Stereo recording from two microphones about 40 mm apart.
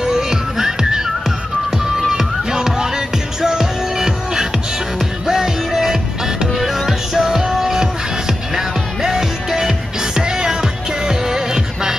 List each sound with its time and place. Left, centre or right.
0.0 s music: centre